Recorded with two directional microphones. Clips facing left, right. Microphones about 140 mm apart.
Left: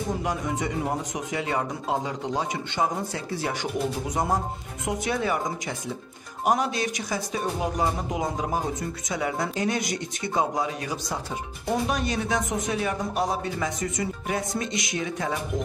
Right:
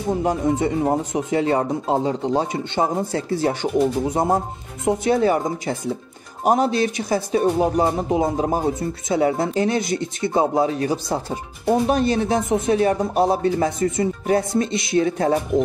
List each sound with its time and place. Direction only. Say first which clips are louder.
0.2 s speech: right 8 dB; 30° right (ahead or behind)